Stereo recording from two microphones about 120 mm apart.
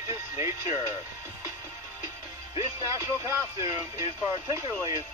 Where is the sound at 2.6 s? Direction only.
25° right (ahead or behind).